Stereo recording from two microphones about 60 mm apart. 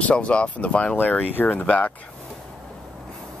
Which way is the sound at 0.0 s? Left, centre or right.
Centre.